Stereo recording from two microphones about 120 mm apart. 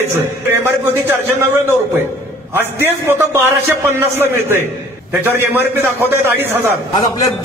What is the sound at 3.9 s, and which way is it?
A man's voice, 20° right (ahead or behind).